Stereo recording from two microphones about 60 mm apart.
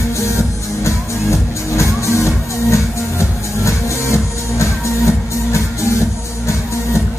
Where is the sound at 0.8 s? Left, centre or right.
Left.